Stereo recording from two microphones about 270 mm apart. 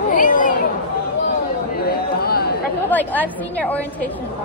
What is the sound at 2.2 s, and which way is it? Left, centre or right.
Chatter, left.